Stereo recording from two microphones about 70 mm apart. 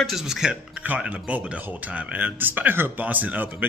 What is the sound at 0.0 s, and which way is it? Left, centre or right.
Speech, centre.